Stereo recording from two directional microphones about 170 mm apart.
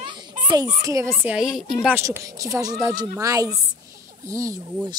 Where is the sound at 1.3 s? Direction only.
Centre (ahead or behind).